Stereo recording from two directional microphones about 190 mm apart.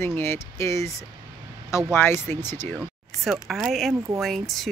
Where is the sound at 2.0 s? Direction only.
10° left (ahead or behind).